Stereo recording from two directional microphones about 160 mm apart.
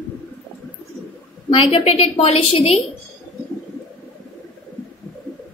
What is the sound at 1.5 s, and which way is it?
A woman's voice, 35° left (ahead or behind).